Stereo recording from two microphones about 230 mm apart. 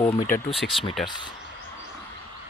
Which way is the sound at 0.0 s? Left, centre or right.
Left.